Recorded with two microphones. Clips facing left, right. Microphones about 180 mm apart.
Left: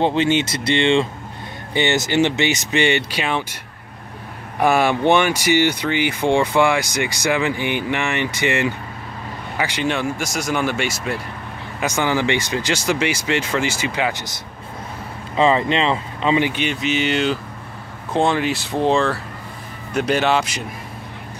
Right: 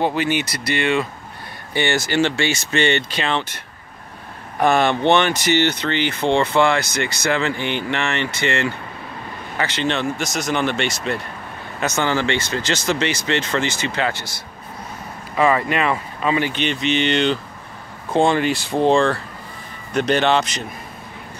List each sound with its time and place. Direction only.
0.0 s speech: 25° left (ahead or behind)
4.6 s speech: 10° left (ahead or behind)
15.3 s speech: 25° left (ahead or behind); by 20.6 s 10° left (ahead or behind)